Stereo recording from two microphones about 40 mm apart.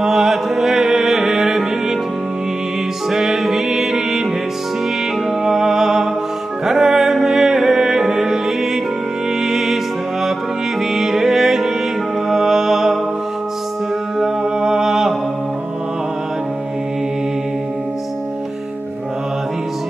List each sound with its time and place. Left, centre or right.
0.0 s music: centre
3.1 s music: centre
5.4 s music: centre
10.9 s music: centre
14.4 s music: centre
14.9 s mantra: centre